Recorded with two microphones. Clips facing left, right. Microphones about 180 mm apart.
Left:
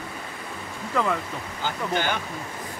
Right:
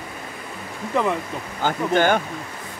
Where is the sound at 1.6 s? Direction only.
50° right (ahead or behind).